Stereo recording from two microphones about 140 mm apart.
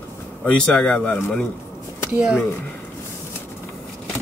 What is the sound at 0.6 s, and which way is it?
Speech, 10° left (ahead or behind).